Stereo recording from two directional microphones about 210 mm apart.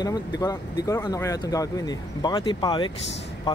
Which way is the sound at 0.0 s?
15° left (ahead or behind).